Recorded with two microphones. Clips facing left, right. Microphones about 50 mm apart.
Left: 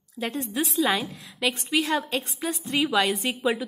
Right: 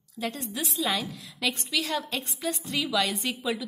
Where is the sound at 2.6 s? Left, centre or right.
Left.